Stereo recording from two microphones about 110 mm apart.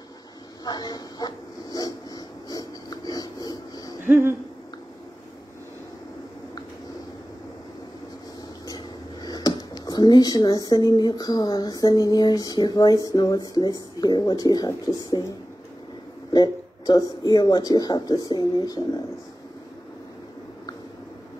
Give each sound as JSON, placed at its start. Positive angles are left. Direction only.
{"t": 0.7, "sound": "dog", "side_deg": 35}
{"t": 4.1, "sound": "a sound", "side_deg": -25}
{"t": 8.6, "sound": "speech", "side_deg": 35}
{"t": 16.3, "sound": "speech", "side_deg": 35}